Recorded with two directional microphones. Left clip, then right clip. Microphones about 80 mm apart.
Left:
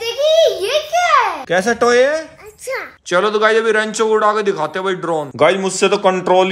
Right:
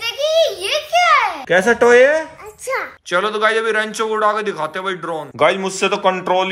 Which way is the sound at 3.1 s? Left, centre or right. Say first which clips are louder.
Left 3 dB; left.